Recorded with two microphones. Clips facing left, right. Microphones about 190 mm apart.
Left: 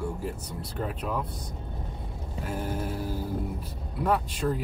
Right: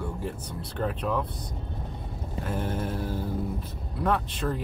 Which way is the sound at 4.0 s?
10° left (ahead or behind).